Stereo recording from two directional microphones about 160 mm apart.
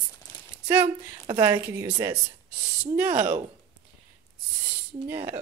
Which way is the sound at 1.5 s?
15° right (ahead or behind).